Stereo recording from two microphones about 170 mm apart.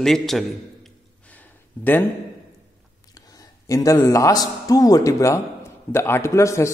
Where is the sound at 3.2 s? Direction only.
20° left (ahead or behind).